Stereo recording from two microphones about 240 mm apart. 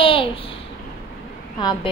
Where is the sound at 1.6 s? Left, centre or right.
Centre.